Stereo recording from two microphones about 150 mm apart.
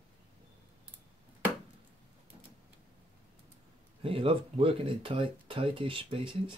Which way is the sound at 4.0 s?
35° right (ahead or behind).